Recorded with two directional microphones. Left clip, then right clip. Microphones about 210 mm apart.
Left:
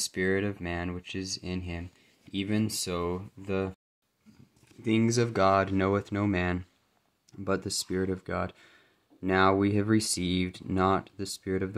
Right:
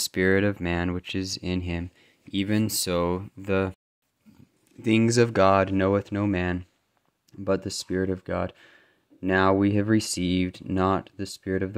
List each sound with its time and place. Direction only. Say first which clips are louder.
0.0 s speech: right 6 dB; 40° right (ahead or behind)
4.8 s speech: right 6 dB; 40° right (ahead or behind)